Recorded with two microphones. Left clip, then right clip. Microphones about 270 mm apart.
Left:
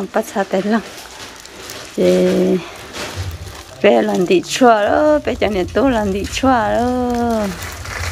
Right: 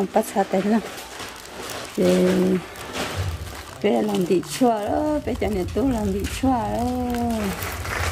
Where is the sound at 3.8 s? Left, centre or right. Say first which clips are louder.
Left 9 dB; centre.